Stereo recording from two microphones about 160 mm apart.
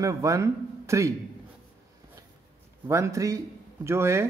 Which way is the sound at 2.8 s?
15° right (ahead or behind).